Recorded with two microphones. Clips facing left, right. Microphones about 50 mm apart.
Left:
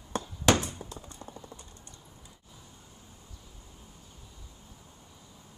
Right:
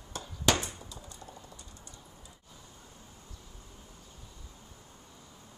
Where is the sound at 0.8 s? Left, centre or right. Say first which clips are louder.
Left 3 dB; left.